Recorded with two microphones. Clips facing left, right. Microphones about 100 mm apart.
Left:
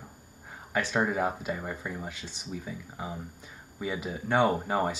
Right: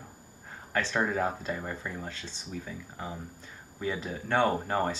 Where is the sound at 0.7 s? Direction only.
10° left (ahead or behind).